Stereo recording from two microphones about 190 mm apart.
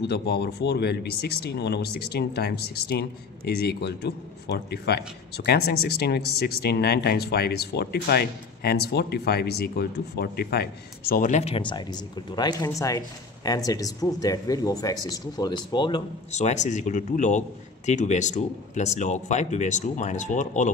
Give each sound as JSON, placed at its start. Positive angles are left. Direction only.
{"t": 0.0, "sound": "speech", "side_deg": 60}
{"t": 16.3, "sound": "a man's voice", "side_deg": 35}